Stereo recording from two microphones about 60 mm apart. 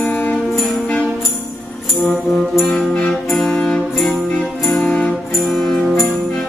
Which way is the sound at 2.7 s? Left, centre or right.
Centre.